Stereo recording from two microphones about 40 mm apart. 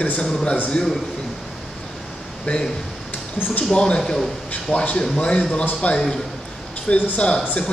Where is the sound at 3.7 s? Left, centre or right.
Left.